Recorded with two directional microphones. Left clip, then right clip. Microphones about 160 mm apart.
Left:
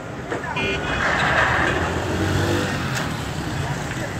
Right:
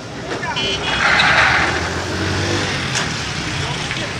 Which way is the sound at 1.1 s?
25° left (ahead or behind).